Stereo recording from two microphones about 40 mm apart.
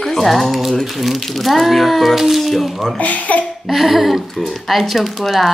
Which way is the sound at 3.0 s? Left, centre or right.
Left.